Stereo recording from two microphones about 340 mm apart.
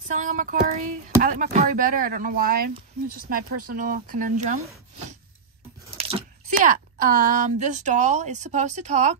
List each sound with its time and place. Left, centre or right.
0.1 s speech: right
5.9 s a sound: centre
7.4 s speech: right